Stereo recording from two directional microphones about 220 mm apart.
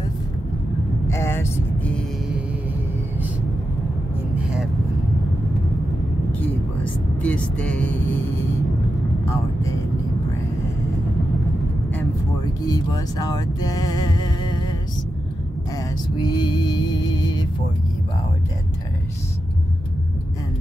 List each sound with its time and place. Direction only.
1.0 s vehicle: 10° left (ahead or behind)
6.4 s vehicle: 5° left (ahead or behind)
12.6 s speech: 15° left (ahead or behind)
15.7 s music: 20° left (ahead or behind)